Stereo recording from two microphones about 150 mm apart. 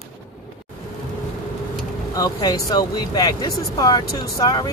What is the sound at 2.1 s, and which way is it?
Speech, 25° left (ahead or behind).